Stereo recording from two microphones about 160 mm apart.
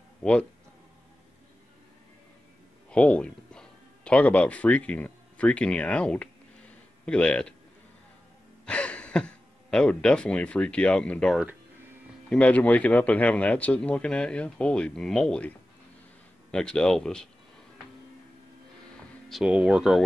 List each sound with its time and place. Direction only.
0.2 s speech: 5° left (ahead or behind)
2.9 s speech: 5° left (ahead or behind)
8.6 s speech: 5° left (ahead or behind)
16.5 s speech: 5° left (ahead or behind)
19.2 s speech: 5° right (ahead or behind)